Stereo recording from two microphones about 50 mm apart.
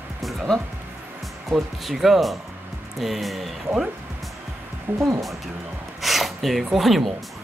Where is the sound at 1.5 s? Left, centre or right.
Centre.